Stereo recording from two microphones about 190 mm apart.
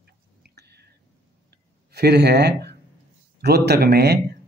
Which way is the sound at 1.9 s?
60° right (ahead or behind).